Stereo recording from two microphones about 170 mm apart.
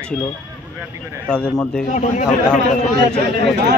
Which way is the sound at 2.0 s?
45° left (ahead or behind).